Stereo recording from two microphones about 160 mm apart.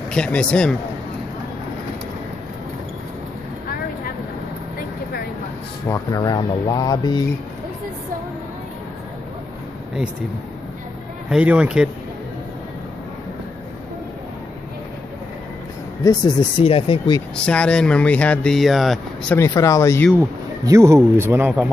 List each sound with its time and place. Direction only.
0.1 s speech: 5° left (ahead or behind)
5.9 s speech: 25° left (ahead or behind)
11.2 s speech: 5° right (ahead or behind)
16.0 s speech: 25° left (ahead or behind)
17.4 s speech: 5° left (ahead or behind)
19.3 s speech: 20° left (ahead or behind)
20.2 s speech: 20° right (ahead or behind)